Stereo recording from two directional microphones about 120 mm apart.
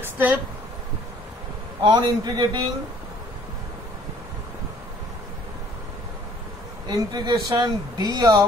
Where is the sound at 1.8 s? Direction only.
40° right (ahead or behind).